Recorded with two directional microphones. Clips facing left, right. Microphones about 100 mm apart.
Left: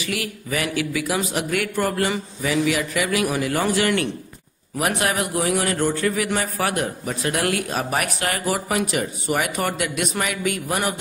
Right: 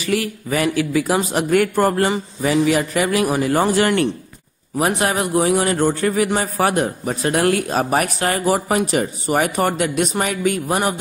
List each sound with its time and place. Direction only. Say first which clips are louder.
0.0 s a man's voice: right 7 dB; 35° right (ahead or behind)